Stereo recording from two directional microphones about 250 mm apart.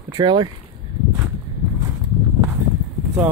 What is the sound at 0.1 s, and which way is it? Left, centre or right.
Speech, centre.